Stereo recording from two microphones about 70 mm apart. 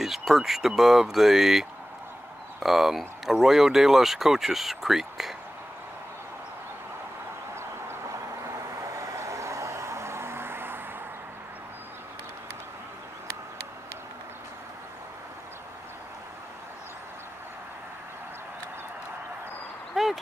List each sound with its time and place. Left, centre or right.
0.0 s speech: centre
8.5 s vehicle: right
20.0 s a sound: centre